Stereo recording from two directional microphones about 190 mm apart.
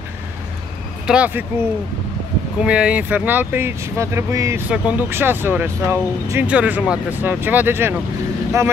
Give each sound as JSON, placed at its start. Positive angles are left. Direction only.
{"t": 1.0, "sound": "speech", "side_deg": -5}
{"t": 2.6, "sound": "speech", "side_deg": -5}